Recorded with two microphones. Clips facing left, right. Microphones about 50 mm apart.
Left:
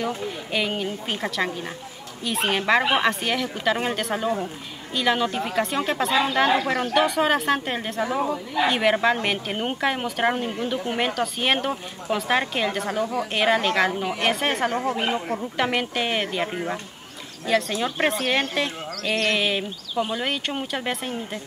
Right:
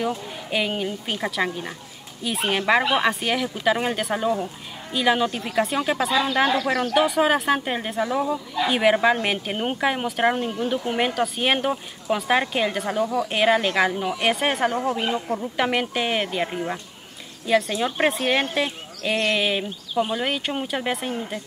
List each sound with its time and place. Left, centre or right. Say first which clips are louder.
0.5 s speech: right 2 dB; centre
6.5 s speech: even; left
6.9 s speech: right 1 dB; centre
8.0 s speech: right 1 dB; left
8.6 s speech: right 2 dB; centre
15.0 s speech: even; centre
15.5 s speech: right 1 dB; centre
17.5 s speech: right 2 dB; centre